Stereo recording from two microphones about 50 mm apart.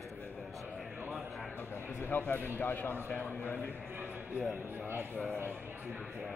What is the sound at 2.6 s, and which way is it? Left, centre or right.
A man's voice, left.